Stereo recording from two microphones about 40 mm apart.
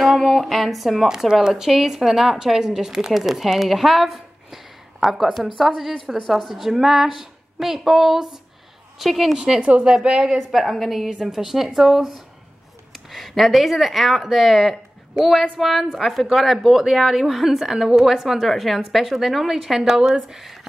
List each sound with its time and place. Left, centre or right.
0.0 s a woman's voice: centre
1.0 s a woman's voice: centre
9.6 s a woman's voice: right
10.3 s a woman's voice: centre
11.1 s a woman's voice: centre